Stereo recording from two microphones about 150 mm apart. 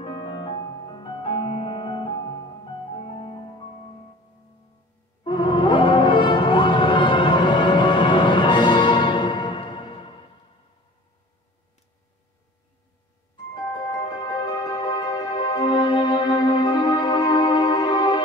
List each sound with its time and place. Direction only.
0.0 s music: 35° left (ahead or behind)
5.2 s music: 30° left (ahead or behind)
13.8 s music: 30° left (ahead or behind)